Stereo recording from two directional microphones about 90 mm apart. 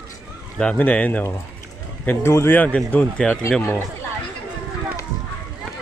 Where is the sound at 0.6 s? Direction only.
15° left (ahead or behind).